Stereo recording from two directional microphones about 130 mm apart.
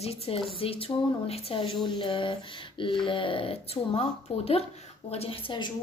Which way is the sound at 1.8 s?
40° left (ahead or behind).